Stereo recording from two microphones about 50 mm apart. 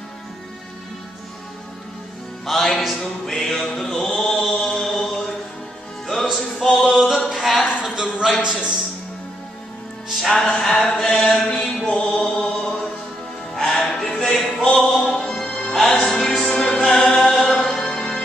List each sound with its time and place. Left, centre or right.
2.4 s music: centre
4.2 s mantra: centre
6.3 s music: centre
7.2 s a sound: centre
8.4 s a man's voice: centre
10.1 s music: centre
13.6 s music: centre